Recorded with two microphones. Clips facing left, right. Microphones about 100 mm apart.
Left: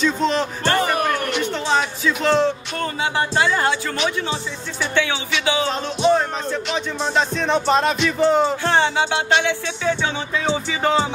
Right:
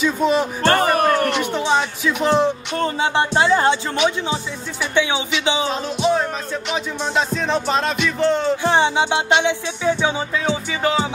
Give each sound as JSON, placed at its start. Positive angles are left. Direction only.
{"t": 0.0, "sound": "music", "side_deg": -10}
{"t": 0.6, "sound": "speech", "side_deg": -50}
{"t": 1.4, "sound": "speech", "side_deg": -15}
{"t": 2.7, "sound": "speech", "side_deg": -30}
{"t": 5.7, "sound": "music", "side_deg": -5}
{"t": 8.6, "sound": "music", "side_deg": -15}
{"t": 10.7, "sound": "music", "side_deg": 0}